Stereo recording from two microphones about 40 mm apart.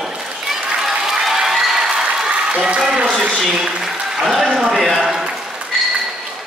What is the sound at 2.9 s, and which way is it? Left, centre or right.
Speech, right.